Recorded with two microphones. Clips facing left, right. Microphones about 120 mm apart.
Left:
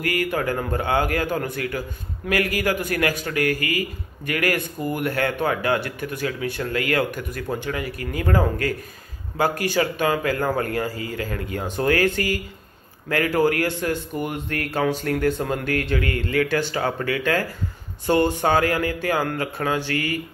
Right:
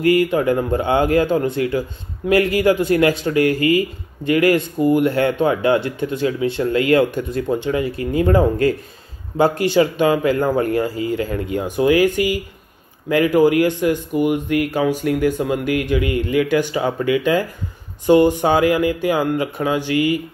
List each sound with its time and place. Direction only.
0.0 s a man's voice: 25° right (ahead or behind)